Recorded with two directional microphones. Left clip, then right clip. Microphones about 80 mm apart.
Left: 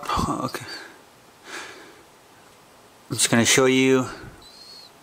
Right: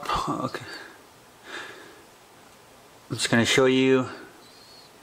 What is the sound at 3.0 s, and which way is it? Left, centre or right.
Speech, centre.